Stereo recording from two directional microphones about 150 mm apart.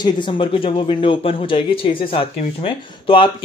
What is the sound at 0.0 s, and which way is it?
A man's voice, 35° left (ahead or behind).